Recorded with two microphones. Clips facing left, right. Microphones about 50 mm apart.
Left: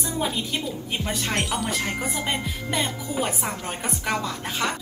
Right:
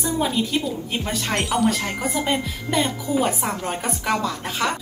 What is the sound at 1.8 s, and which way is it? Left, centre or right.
Speech, right.